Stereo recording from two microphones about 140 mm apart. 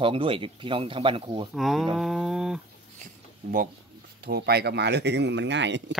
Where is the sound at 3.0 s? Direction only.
85° right.